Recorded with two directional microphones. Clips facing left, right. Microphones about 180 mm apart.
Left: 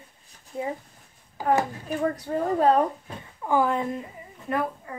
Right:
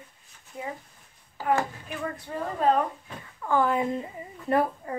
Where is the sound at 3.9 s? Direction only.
30° right (ahead or behind).